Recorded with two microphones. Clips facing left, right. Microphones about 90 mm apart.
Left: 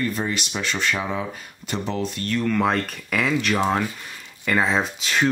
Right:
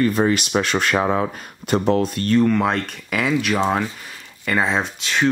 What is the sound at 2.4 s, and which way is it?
Speech, centre (ahead or behind).